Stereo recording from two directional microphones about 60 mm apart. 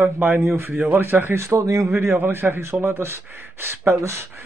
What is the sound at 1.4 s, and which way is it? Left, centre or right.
Speech, right.